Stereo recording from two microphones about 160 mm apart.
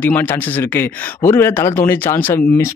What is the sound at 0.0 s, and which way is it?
Speech, 10° left (ahead or behind).